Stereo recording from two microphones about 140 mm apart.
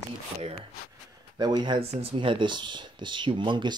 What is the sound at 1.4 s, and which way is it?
Speech, 30° right (ahead or behind).